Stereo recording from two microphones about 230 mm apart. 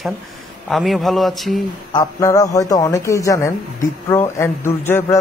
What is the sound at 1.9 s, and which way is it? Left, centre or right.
A man's voice, centre.